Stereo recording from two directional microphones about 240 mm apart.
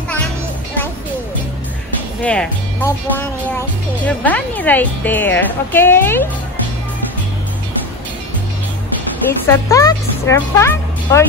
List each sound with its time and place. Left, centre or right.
2.2 s speech: centre
9.5 s speech: centre